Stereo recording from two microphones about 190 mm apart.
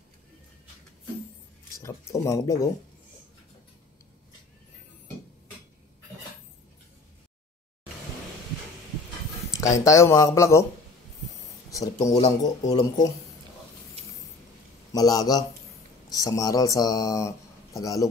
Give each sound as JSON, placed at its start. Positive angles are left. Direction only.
{"t": 1.8, "sound": "speech", "side_deg": 15}
{"t": 9.8, "sound": "speech", "side_deg": 15}
{"t": 11.7, "sound": "speech", "side_deg": 15}
{"t": 14.9, "sound": "speech", "side_deg": 20}